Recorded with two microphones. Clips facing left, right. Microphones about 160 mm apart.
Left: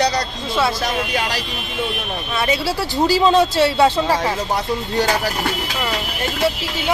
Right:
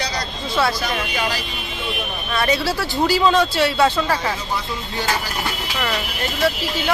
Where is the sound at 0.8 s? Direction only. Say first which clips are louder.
Left 2 dB; 70° left (ahead or behind).